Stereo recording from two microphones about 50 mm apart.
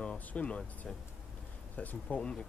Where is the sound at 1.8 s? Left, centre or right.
Left.